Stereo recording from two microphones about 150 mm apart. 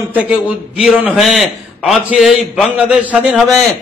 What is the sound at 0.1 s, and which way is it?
A man's voice, 10° right (ahead or behind).